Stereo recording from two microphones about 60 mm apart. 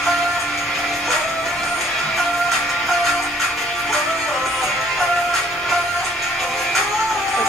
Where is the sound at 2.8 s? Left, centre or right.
Centre.